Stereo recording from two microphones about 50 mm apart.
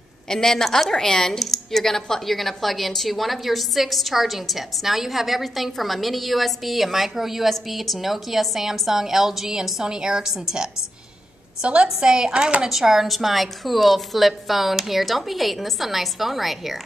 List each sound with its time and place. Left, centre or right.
0.3 s a woman's voice: centre
11.6 s a woman's voice: centre